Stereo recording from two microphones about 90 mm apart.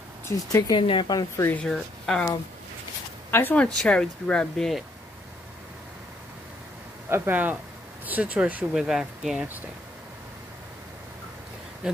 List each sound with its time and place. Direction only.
0.3 s speech: 35° left (ahead or behind)
0.7 s speech: 65° left (ahead or behind)
1.6 s speech: 5° left (ahead or behind)
3.3 s speech: 25° left (ahead or behind)
3.6 s speech: 10° left (ahead or behind)
7.1 s speech: 25° right (ahead or behind)
8.7 s speech: 5° right (ahead or behind)
11.8 s a sound: 10° right (ahead or behind)